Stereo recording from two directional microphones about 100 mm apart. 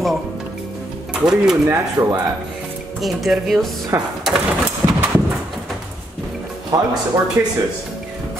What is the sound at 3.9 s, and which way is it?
Speech, 25° right (ahead or behind).